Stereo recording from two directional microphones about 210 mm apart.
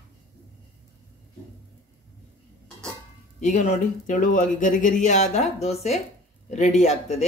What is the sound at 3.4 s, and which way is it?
A man's voice, 35° left (ahead or behind).